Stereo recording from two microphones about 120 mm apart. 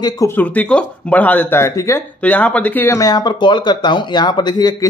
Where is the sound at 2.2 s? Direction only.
10° left (ahead or behind).